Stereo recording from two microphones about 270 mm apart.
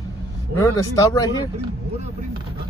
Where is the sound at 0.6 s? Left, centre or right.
Centre.